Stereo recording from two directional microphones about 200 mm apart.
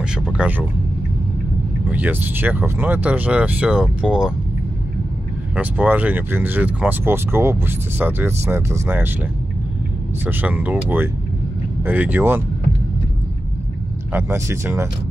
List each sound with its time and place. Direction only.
0.0 s speech: 5° right (ahead or behind)
1.9 s speech: 10° right (ahead or behind)
5.6 s speech: 10° right (ahead or behind)
10.2 s speech: 10° right (ahead or behind)
14.1 s speech: 10° right (ahead or behind)